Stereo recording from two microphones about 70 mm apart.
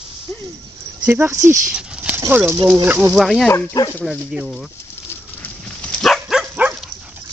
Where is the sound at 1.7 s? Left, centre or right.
Centre.